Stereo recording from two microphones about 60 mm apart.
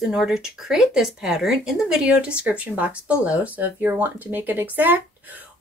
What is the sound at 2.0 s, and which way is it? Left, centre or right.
Speech, centre.